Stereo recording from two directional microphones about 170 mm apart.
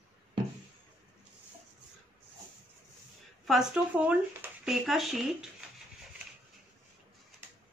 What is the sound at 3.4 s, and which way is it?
Speech, centre (ahead or behind).